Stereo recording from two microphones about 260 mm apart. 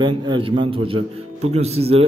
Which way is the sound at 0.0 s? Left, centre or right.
Centre.